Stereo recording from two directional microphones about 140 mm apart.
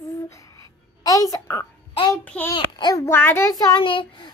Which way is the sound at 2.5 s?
30° left (ahead or behind).